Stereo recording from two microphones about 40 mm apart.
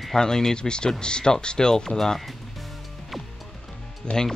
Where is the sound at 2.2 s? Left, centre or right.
Centre.